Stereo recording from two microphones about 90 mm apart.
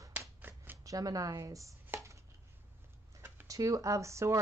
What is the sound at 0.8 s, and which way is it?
Speech, 40° right (ahead or behind).